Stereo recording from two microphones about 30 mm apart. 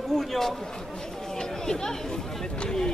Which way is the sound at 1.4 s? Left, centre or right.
Left.